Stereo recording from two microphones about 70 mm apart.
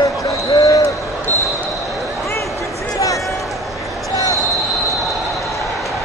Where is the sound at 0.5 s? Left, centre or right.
Left.